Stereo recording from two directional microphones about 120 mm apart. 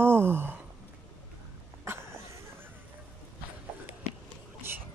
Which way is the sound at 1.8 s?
20° right (ahead or behind).